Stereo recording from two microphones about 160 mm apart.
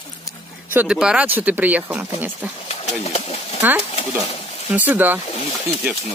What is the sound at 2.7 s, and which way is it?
Pigeon, 45° left (ahead or behind).